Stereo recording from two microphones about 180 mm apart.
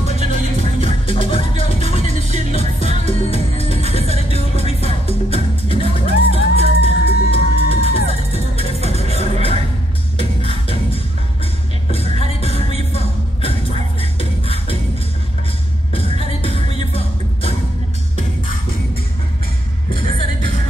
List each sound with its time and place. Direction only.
0.0 s music: 35° left (ahead or behind)
11.9 s music: 30° left (ahead or behind)
12.9 s beatboxing: 30° left (ahead or behind)
15.9 s music: 30° left (ahead or behind)
20.0 s music: 30° left (ahead or behind)